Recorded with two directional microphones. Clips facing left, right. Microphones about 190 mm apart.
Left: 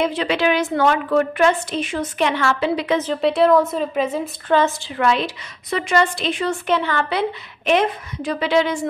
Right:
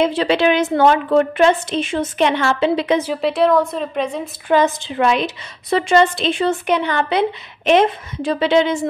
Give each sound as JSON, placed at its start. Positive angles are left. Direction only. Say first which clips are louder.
{"t": 0.0, "sound": "a woman's voice", "louder": "right 4 dB", "side_deg": -30}
{"t": 3.0, "sound": "a woman's voice", "louder": "even", "side_deg": -5}
{"t": 4.5, "sound": "a woman's voice", "louder": "right 3 dB", "side_deg": -15}